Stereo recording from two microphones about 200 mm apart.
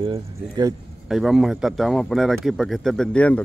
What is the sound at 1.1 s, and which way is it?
Speech, centre (ahead or behind).